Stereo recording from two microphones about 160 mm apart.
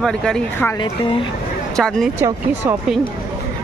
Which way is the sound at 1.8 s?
5° left (ahead or behind).